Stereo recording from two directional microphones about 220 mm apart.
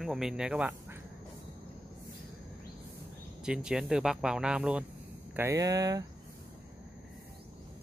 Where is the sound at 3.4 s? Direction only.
5° right (ahead or behind).